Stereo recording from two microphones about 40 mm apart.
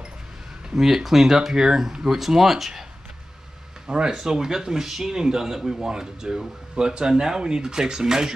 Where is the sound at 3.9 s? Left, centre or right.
Right.